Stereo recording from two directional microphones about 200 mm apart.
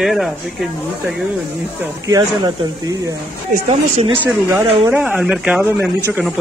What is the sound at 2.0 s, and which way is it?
Speech, 20° right (ahead or behind).